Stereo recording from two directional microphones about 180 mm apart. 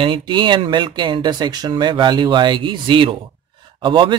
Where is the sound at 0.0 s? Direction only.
25° right (ahead or behind).